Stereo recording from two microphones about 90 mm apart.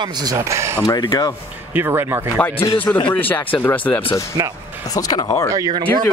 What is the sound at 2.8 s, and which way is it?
Speech, 20° left (ahead or behind).